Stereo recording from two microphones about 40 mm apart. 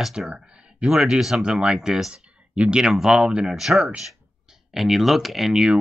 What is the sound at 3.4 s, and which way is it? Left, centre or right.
Speech, centre.